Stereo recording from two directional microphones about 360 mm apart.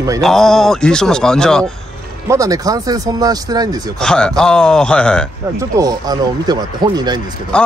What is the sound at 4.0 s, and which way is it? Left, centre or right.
Speech, centre.